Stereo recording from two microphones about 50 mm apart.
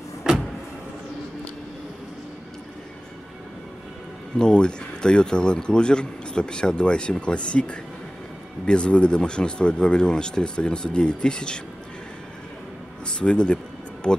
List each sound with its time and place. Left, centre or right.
4.4 s a man's voice: centre
13.0 s a man's voice: centre